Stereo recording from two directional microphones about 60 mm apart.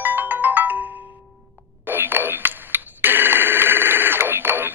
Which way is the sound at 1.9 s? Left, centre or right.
Right.